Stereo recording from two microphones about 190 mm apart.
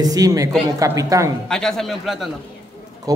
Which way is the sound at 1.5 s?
Centre (ahead or behind).